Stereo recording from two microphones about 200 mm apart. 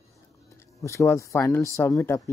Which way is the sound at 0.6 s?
15° left (ahead or behind).